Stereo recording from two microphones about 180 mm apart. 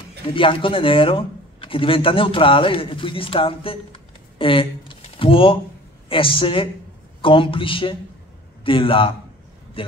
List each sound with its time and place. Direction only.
0.3 s speech: 30° left (ahead or behind)